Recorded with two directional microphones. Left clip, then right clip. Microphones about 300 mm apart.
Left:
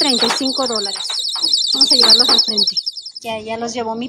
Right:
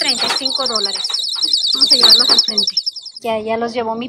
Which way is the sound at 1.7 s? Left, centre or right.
Centre.